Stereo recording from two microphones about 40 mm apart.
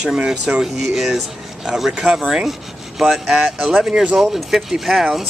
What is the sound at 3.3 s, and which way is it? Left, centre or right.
Speech, centre.